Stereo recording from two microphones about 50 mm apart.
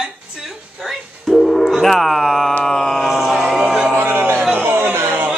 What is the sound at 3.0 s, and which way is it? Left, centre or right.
Music, centre.